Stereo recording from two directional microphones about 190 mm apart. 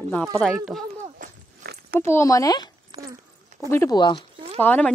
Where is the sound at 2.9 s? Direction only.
25° right (ahead or behind).